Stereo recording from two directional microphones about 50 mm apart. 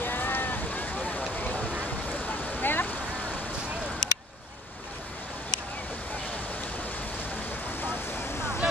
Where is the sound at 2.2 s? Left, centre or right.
Left.